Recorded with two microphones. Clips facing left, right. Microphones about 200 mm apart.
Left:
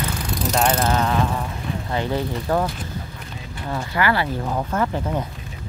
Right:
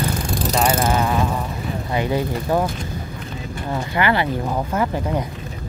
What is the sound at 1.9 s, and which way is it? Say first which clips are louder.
Speech: right 3 dB; 10° right (ahead or behind).